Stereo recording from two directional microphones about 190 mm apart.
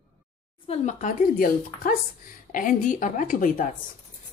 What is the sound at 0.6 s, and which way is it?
A woman's voice, 35° left (ahead or behind).